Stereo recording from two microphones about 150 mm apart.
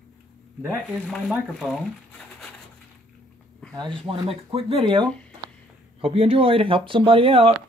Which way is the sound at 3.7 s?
30° right (ahead or behind).